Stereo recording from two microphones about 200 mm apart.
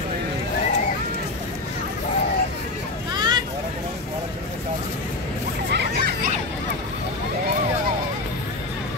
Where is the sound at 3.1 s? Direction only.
20° right (ahead or behind).